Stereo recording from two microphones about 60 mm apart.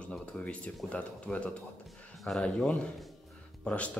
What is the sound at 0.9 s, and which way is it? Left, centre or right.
Speech, left.